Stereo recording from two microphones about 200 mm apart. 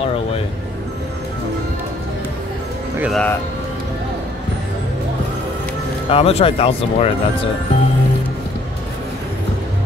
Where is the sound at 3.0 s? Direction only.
Centre (ahead or behind).